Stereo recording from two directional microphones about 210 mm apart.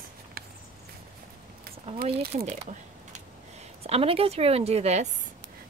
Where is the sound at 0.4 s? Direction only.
45° right (ahead or behind).